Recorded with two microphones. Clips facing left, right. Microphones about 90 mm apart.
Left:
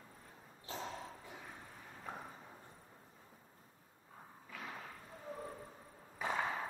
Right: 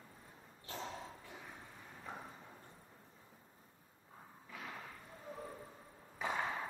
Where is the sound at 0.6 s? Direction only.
10° left (ahead or behind).